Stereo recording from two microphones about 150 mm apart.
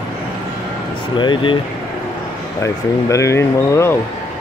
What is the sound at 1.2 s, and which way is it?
Speech, 30° left (ahead or behind).